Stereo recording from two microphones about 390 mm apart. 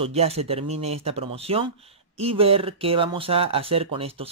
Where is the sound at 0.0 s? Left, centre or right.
Centre.